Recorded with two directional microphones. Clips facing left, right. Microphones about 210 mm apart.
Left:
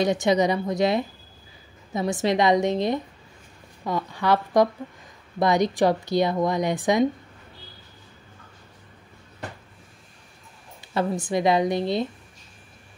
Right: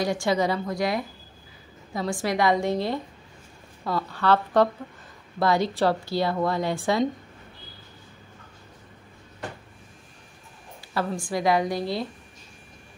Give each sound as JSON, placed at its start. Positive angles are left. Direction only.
{"t": 0.0, "sound": "a woman's voice", "side_deg": 20}
{"t": 11.0, "sound": "a woman's voice", "side_deg": 20}